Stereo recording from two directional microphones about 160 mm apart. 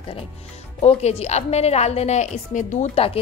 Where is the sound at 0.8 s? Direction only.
45° left (ahead or behind).